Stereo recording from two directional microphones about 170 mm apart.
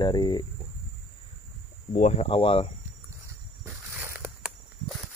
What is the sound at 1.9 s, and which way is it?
Speech, 40° left (ahead or behind).